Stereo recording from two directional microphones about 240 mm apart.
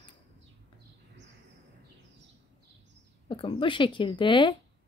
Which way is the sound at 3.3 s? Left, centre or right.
Left.